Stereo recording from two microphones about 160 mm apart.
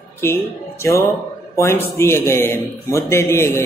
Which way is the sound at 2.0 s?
15° left (ahead or behind).